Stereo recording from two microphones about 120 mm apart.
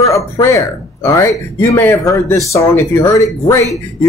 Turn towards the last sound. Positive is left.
turn(degrees=25)  # may be behind; listen again after turning